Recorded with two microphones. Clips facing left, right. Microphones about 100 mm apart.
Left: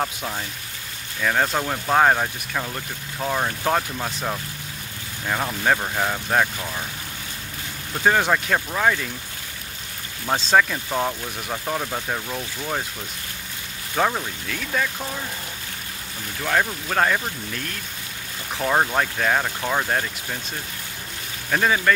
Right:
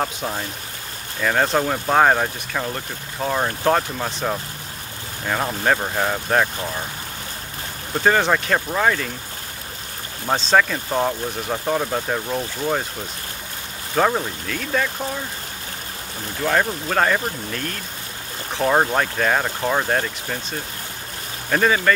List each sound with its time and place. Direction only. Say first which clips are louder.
0.0 s speech: right 2 dB; 10° right (ahead or behind)
8.0 s speech: right 1 dB; centre (ahead or behind)
10.3 s speech: right 1 dB; 5° left (ahead or behind)
10.9 s speech: right 3 dB; 10° right (ahead or behind)
13.9 s speech: right 3 dB; 5° right (ahead or behind)
16.4 s speech: right 2 dB; 5° right (ahead or behind)
18.7 s speech: right 2 dB; 10° right (ahead or behind)
21.5 s speech: right 2 dB; centre (ahead or behind)